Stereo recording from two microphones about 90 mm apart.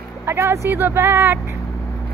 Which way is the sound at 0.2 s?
25° right (ahead or behind).